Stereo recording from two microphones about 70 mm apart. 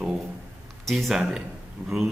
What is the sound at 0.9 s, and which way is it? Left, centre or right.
Speech, centre.